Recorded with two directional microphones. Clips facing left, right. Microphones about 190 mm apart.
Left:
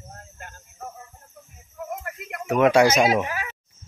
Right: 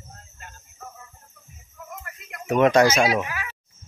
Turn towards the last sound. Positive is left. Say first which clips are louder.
# left 1 dB
turn(degrees=15)  # may be behind; listen again after turning